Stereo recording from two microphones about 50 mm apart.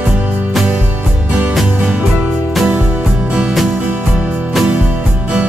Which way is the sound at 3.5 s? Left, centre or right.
Centre.